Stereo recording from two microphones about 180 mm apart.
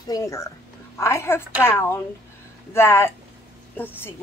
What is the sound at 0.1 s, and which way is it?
Speech, 15° left (ahead or behind).